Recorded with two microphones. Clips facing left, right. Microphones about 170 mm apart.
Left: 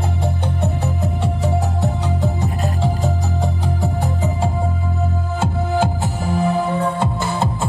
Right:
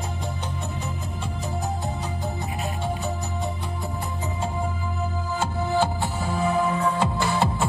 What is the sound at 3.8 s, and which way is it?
Music, 85° left.